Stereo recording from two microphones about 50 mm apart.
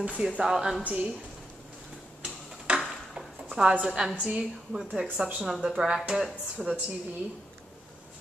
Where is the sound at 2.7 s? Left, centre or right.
Right.